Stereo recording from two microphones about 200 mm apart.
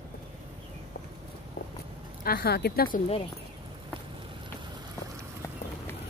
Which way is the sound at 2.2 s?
50° left (ahead or behind).